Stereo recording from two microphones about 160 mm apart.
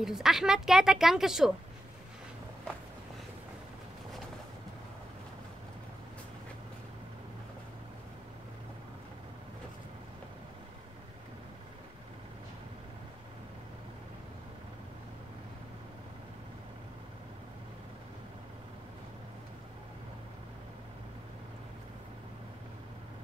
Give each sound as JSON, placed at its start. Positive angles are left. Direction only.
{"t": 0.0, "sound": "a woman's voice", "side_deg": -5}